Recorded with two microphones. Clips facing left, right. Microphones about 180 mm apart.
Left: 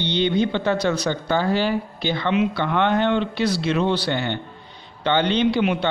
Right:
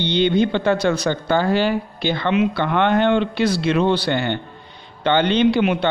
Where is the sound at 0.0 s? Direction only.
55° right (ahead or behind).